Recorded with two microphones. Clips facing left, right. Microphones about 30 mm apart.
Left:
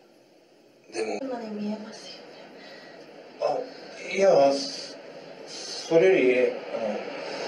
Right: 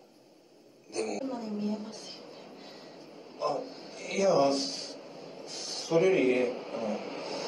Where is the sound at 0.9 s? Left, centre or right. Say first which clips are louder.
Left 4 dB; left.